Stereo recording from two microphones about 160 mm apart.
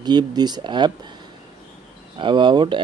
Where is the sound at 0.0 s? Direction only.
25° right (ahead or behind).